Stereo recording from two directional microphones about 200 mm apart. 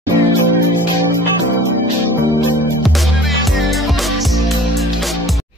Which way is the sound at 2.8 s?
Centre (ahead or behind).